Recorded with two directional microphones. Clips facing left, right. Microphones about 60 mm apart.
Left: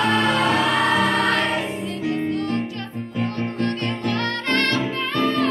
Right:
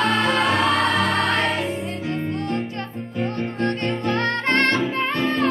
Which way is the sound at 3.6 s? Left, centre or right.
Right.